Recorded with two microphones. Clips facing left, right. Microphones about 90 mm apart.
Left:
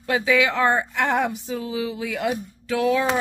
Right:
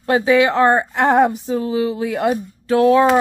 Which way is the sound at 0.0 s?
35° right (ahead or behind).